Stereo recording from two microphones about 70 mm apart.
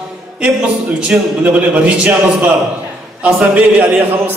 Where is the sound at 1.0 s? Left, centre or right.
Centre.